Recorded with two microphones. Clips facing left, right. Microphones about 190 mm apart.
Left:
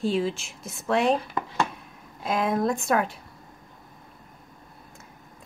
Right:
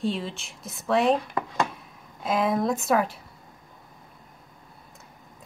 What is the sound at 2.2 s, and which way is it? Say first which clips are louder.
Speech: even; centre (ahead or behind).